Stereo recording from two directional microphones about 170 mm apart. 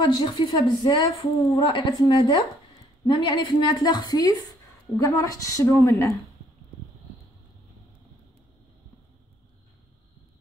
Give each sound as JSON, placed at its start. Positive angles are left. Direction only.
{"t": 0.0, "sound": "a woman's voice", "side_deg": 25}